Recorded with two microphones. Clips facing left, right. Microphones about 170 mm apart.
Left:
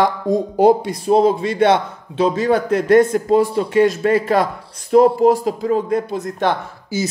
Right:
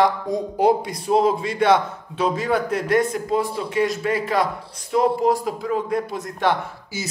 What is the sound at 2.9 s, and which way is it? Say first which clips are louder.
Speech: left 8 dB; 50° left (ahead or behind).